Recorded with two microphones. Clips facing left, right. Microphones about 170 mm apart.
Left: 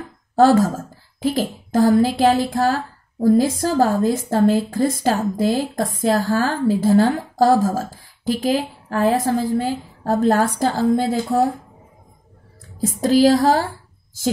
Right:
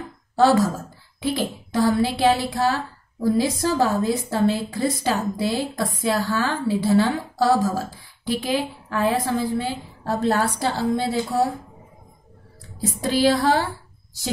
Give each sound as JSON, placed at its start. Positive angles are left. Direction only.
{"t": 0.4, "sound": "a woman's voice", "side_deg": 50}
{"t": 12.8, "sound": "a woman's voice", "side_deg": 45}